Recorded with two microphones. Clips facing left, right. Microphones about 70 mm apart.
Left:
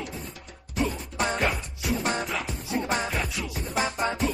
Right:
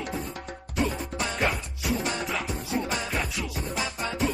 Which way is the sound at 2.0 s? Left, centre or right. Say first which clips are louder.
Left 2 dB; left.